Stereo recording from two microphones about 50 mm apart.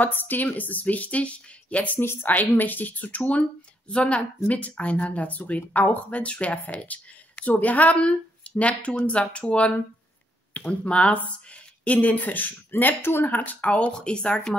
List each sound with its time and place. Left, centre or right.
0.0 s speech: left; by 14.6 s centre